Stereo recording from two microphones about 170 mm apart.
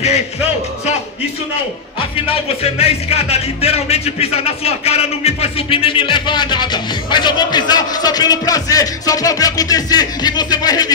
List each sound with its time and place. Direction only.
2.8 s speech: 35° left (ahead or behind)